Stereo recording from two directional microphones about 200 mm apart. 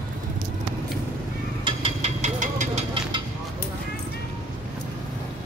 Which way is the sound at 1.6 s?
25° right (ahead or behind).